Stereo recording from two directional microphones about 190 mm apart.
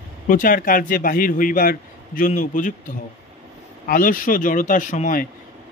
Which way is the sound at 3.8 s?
45° left (ahead or behind).